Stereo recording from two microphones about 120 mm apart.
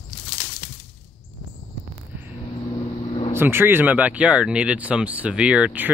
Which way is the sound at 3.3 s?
20° right (ahead or behind).